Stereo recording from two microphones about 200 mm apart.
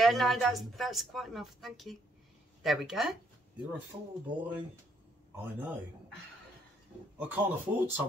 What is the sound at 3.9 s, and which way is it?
Speech, 25° right (ahead or behind).